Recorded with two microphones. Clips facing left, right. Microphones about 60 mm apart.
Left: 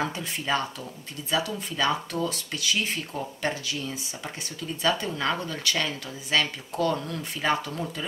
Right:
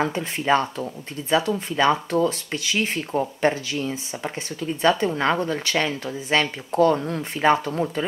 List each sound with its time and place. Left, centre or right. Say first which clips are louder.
0.0 s speech: right 6 dB; right